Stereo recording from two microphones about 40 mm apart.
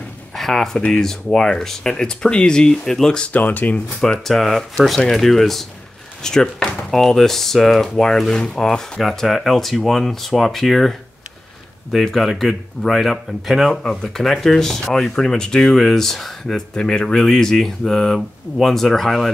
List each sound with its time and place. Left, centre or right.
0.4 s speech: centre
3.3 s speech: left
4.2 s speech: centre
13.8 s speech: centre